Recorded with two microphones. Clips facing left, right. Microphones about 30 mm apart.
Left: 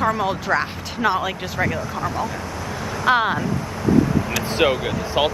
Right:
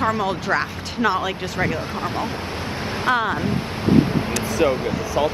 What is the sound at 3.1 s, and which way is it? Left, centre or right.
Speech, centre.